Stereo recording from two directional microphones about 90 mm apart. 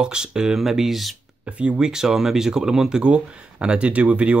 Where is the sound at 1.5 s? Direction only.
10° right (ahead or behind).